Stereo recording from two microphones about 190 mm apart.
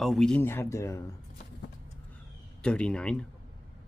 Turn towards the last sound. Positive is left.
turn(degrees=5)  # may be behind; listen again after turning